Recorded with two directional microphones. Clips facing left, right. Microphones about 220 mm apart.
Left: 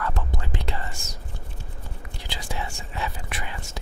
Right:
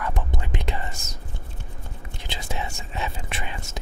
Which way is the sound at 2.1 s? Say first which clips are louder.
Right 1 dB; 25° right (ahead or behind).